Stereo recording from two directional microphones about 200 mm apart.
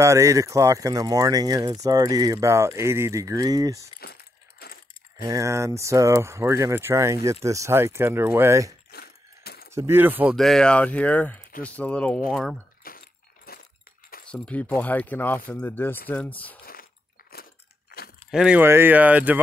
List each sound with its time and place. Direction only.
0.0 s speech: 15° right (ahead or behind)
4.0 s a sound: 50° left (ahead or behind)
5.2 s speech: 15° right (ahead or behind)
8.9 s ratchet: 50° left (ahead or behind)
9.8 s speech: 10° right (ahead or behind)
10.3 s speech: centre (ahead or behind)
12.8 s a sound: 45° left (ahead or behind)
14.2 s speech: 5° left (ahead or behind)
18.3 s speech: 5° right (ahead or behind)